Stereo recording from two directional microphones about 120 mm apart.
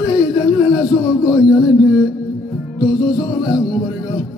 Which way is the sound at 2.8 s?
35° left (ahead or behind).